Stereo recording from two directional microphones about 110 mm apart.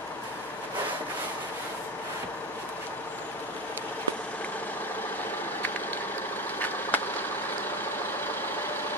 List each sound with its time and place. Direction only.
6.6 s vehicle: 15° left (ahead or behind)